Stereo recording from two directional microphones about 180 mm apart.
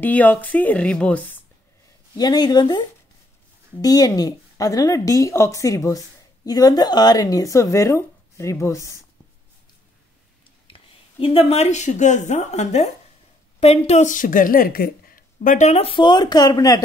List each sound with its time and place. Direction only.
0.0 s speech: 10° left (ahead or behind)
2.1 s a woman's voice: 20° left (ahead or behind)
3.8 s a woman's voice: 20° left (ahead or behind)
10.7 s speech: 30° left (ahead or behind)